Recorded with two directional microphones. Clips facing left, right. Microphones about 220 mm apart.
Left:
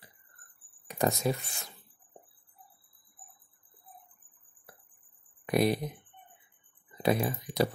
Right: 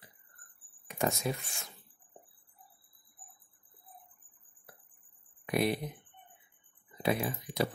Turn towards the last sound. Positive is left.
turn(degrees=40)  # may be behind; listen again after turning